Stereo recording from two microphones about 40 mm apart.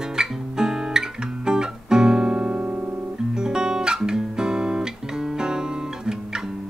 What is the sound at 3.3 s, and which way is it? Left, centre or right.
Guitar, centre.